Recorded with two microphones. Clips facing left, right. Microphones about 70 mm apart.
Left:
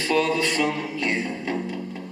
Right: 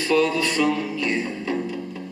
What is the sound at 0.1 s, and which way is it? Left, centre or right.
Music, left.